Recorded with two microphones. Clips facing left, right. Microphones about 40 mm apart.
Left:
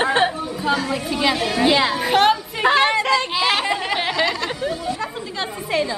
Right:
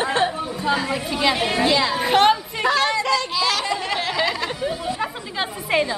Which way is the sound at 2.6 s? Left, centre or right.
Left.